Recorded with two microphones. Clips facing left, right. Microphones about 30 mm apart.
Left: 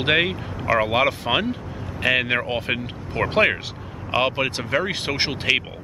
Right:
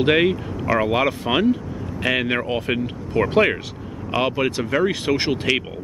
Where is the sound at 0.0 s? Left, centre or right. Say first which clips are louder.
Right 3 dB; centre.